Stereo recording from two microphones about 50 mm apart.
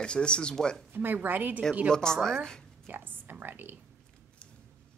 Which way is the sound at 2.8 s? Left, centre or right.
Right.